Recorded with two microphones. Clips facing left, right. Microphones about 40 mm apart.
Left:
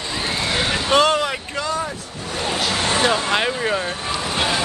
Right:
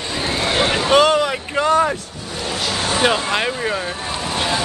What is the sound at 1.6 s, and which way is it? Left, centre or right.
Vehicle, right.